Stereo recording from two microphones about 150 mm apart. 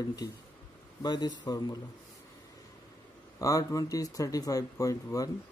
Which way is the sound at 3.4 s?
20° left (ahead or behind).